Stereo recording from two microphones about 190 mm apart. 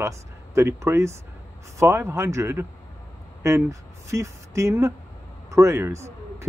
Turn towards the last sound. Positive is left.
turn(degrees=-15)  # may be behind; listen again after turning